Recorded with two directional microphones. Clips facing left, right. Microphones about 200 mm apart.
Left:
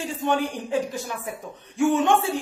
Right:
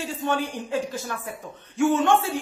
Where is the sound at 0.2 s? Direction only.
15° left (ahead or behind).